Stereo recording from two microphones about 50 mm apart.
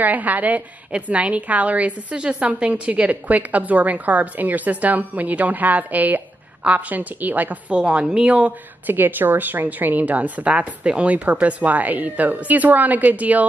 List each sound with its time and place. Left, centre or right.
0.0 s a woman's voice: right
7.7 s speech: right
8.8 s a woman's voice: right